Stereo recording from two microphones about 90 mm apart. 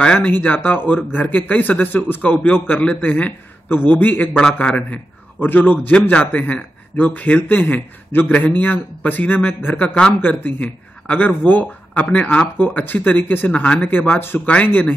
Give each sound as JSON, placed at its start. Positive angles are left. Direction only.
{"t": 0.0, "sound": "a man's voice", "side_deg": 15}